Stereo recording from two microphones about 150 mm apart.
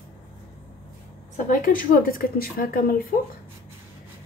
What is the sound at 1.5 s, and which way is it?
Speech, 70° left (ahead or behind).